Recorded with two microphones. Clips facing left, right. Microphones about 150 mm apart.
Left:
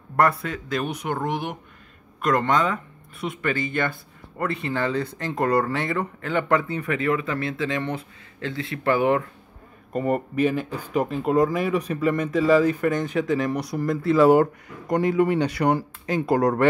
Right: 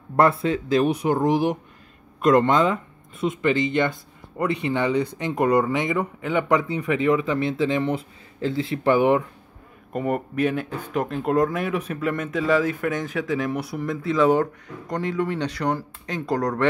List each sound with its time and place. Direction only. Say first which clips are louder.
0.1 s speech: right 3 dB; 25° right (ahead or behind)
9.9 s speech: left 1 dB; centre (ahead or behind)